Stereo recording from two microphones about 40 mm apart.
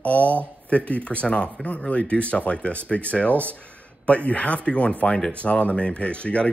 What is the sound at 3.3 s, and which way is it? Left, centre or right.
Speech, right.